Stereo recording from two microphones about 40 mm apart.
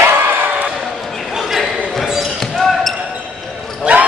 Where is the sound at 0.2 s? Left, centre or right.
Right.